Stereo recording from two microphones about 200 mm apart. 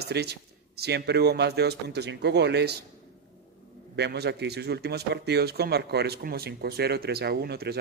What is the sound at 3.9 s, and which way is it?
Speech, 55° right (ahead or behind).